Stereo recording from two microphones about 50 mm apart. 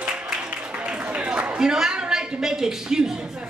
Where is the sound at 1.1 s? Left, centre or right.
Right.